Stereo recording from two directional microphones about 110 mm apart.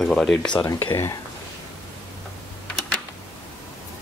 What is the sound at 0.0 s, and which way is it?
Speech, 5° left (ahead or behind).